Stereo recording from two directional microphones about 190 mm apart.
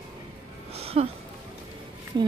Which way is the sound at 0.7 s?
30° right (ahead or behind).